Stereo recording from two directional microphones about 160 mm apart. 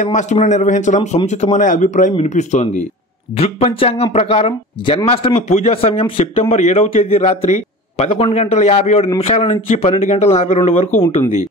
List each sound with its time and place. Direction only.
0.0 s a man's voice: 50° left (ahead or behind)